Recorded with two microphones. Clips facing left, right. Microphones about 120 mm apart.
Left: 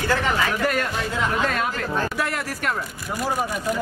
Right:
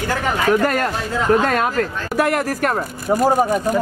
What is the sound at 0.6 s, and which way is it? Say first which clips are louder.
Speech: right 4 dB; 45° right (ahead or behind).